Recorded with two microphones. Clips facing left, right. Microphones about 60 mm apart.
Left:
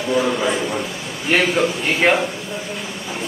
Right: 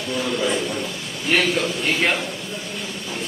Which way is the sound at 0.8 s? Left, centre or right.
Centre.